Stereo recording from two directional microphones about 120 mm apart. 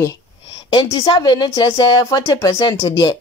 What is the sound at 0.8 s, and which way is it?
Speech, 35° left (ahead or behind).